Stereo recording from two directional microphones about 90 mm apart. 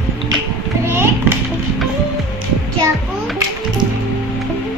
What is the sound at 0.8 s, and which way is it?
Children playing, 30° right (ahead or behind).